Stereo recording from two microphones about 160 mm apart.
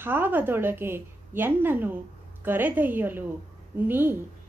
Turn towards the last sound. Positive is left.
turn(degrees=-15)  # may be behind; listen again after turning